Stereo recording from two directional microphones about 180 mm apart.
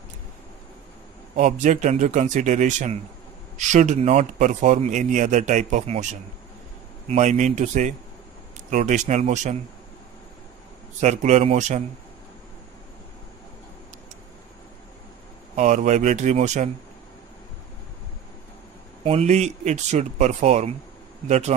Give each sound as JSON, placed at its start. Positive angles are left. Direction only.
{"t": 1.3, "sound": "speech", "side_deg": -40}
{"t": 7.1, "sound": "speech", "side_deg": -40}
{"t": 11.0, "sound": "speech", "side_deg": -40}
{"t": 15.5, "sound": "speech", "side_deg": -40}
{"t": 19.0, "sound": "speech", "side_deg": -35}